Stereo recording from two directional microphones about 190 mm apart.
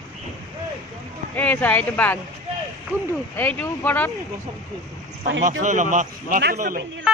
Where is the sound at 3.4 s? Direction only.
10° left (ahead or behind).